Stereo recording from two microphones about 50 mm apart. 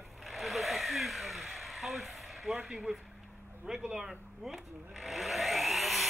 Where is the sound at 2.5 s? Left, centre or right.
Centre.